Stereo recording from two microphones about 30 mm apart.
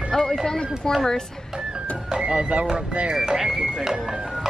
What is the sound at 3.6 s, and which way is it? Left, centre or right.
Speech, right.